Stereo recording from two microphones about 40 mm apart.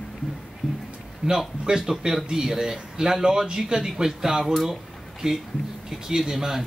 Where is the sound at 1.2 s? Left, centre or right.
Right.